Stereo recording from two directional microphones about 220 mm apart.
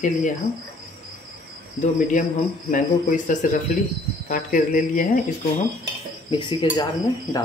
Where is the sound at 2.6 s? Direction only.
35° left (ahead or behind).